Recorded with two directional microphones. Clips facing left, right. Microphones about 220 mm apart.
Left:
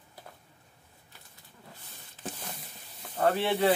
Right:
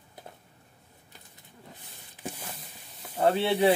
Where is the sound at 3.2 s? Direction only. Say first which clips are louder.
Right 3 dB; 15° right (ahead or behind).